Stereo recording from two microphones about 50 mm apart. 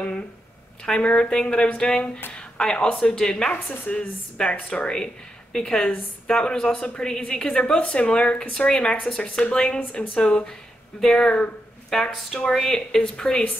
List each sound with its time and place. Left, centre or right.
0.8 s speech: centre
4.4 s speech: left
4.6 s speech: centre
11.9 s speech: centre